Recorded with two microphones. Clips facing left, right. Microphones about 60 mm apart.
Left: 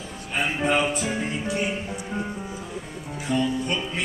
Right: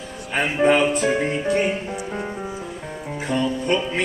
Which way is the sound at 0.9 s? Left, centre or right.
Right.